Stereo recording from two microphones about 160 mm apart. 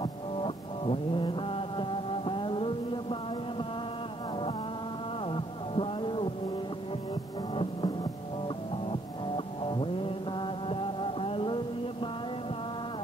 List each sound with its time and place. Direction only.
0.0 s music: 35° left (ahead or behind)
5.3 s a sound: 30° left (ahead or behind)
7.5 s music: 35° left (ahead or behind)
9.7 s mantra: 30° left (ahead or behind)